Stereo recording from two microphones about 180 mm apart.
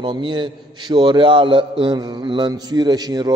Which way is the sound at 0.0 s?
25° right (ahead or behind).